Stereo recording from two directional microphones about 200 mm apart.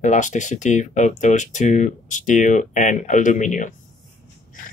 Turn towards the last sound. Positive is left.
turn(degrees=40)  # may be behind; listen again after turning